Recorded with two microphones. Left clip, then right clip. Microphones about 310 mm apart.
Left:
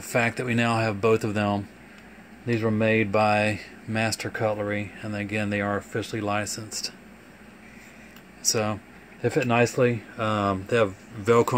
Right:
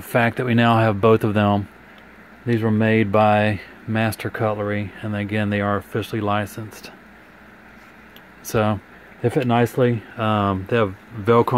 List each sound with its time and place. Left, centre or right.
0.1 s speech: right
8.5 s speech: right